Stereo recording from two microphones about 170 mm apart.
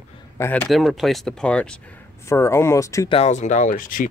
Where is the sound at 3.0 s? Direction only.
40° left (ahead or behind).